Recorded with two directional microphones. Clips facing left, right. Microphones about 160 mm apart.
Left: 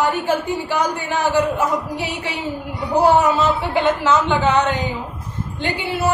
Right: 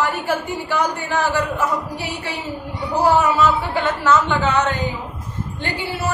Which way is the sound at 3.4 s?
15° left (ahead or behind).